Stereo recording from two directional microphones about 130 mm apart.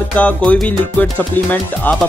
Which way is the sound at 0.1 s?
10° left (ahead or behind).